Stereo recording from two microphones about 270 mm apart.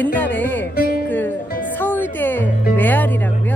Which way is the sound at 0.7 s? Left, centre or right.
Left.